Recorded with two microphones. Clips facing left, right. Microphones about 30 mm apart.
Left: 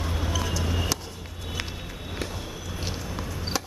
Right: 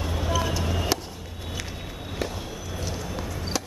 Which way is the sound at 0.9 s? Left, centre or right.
Centre.